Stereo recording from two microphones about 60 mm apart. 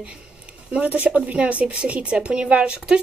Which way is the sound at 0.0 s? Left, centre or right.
Centre.